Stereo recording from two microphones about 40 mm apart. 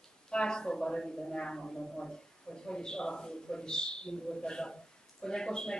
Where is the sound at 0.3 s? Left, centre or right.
Centre.